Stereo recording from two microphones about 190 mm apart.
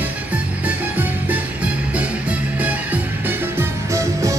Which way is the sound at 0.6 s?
10° right (ahead or behind).